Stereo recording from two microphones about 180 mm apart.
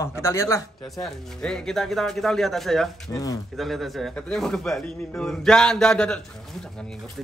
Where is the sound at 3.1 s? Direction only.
20° left (ahead or behind).